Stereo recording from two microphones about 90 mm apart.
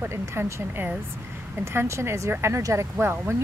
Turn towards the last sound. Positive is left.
turn(degrees=-25)  # may be behind; listen again after turning